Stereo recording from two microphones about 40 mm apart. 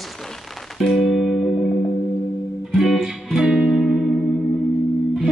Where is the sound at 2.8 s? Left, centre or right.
Centre.